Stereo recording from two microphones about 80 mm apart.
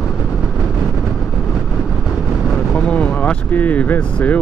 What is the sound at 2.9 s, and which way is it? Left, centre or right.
Vehicle, centre.